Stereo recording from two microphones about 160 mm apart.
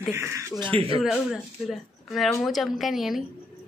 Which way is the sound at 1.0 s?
Centre (ahead or behind).